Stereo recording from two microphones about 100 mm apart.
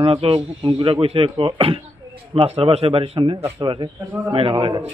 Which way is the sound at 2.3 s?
80° right.